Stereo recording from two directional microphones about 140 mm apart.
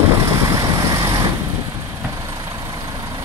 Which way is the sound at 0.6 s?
25° right (ahead or behind).